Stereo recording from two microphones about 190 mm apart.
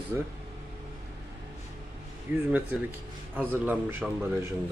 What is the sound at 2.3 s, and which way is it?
Speech, 10° right (ahead or behind).